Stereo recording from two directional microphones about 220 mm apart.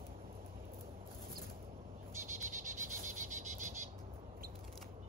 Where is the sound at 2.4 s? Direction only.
35° right (ahead or behind).